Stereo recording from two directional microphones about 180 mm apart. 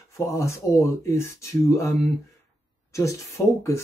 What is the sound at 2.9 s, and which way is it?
Speech, 15° left (ahead or behind).